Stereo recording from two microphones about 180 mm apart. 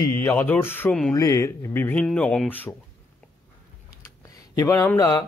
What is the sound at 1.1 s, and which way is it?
Speech, 20° left (ahead or behind).